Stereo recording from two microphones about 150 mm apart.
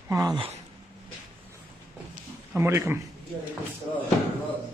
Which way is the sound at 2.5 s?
20° right (ahead or behind).